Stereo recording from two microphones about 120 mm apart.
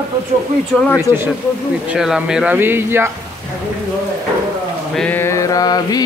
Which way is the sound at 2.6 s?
20° right (ahead or behind).